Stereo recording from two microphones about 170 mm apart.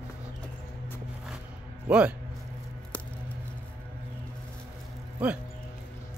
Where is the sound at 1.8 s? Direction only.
5° right (ahead or behind).